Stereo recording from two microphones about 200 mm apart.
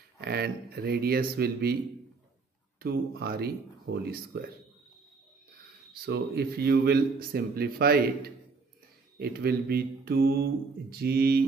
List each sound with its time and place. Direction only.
0.2 s a man's voice: 55° right (ahead or behind)
2.8 s a man's voice: 50° right (ahead or behind)
6.0 s a man's voice: 55° right (ahead or behind)